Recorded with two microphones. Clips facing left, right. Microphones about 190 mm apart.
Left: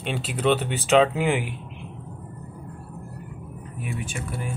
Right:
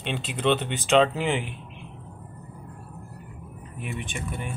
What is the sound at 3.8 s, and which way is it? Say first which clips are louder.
Speech: left 1 dB; 5° left (ahead or behind).